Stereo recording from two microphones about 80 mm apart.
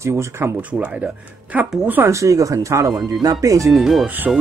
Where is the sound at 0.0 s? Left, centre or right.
Right.